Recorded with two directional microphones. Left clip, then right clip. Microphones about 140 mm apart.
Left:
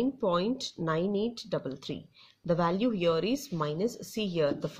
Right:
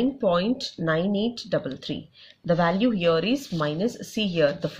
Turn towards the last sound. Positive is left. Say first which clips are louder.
# right 6 dB
turn(degrees=45)  # may be behind; listen again after turning